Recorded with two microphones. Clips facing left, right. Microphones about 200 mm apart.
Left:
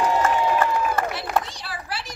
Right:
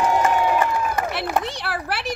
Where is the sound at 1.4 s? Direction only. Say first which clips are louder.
Right 8 dB; 65° right (ahead or behind).